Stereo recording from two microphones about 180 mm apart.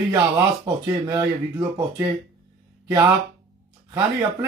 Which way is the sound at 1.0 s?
15° right (ahead or behind).